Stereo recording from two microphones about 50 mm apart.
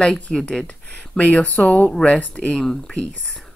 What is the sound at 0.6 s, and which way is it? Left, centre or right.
Speech, left.